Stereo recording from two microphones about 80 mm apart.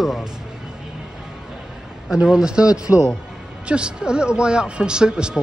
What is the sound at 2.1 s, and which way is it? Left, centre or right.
A man's voice, centre.